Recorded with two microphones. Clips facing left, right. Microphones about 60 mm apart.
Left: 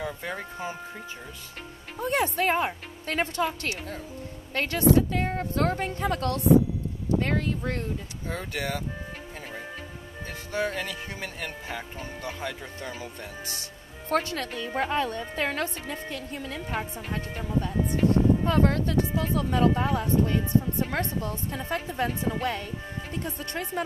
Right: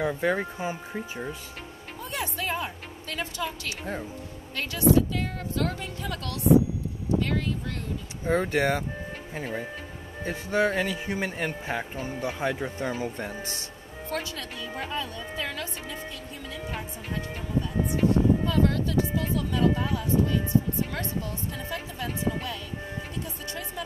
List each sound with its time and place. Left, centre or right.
0.0 s speech: right
0.6 s speech: centre
2.0 s a woman's voice: left
8.3 s speech: right
12.0 s speech: right
14.0 s a woman's voice: left